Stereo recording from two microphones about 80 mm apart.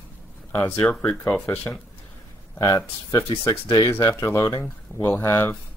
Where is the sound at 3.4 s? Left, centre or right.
Left.